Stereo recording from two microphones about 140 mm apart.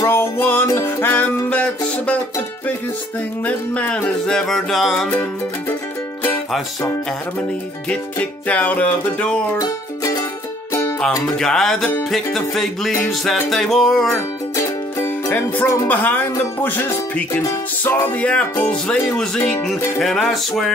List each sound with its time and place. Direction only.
0.0 s music: 15° left (ahead or behind)
3.4 s music: 10° left (ahead or behind)
7.9 s music: 10° left (ahead or behind)
10.7 s music: 20° left (ahead or behind)
11.3 s music: 5° left (ahead or behind)
14.1 s music: 20° left (ahead or behind); by 20.7 s centre (ahead or behind)